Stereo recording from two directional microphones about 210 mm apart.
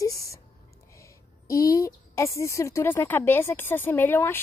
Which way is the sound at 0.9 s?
15° left (ahead or behind).